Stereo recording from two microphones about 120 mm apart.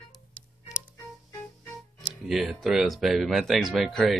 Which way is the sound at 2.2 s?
Centre (ahead or behind).